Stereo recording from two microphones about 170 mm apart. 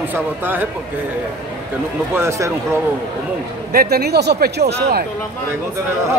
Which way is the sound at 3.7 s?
65° right (ahead or behind).